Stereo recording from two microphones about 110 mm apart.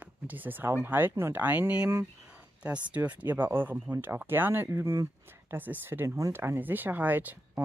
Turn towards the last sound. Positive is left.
turn(degrees=-15)  # may be behind; listen again after turning